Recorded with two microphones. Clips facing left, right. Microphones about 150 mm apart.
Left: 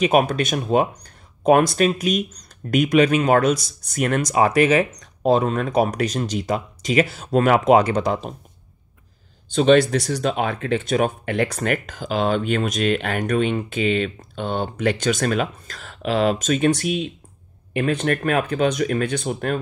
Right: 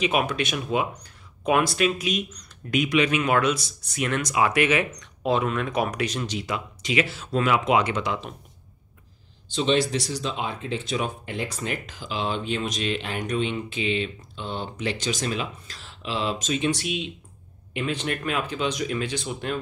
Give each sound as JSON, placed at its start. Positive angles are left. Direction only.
{"t": 0.0, "sound": "speech", "side_deg": 45}
{"t": 9.5, "sound": "speech", "side_deg": 55}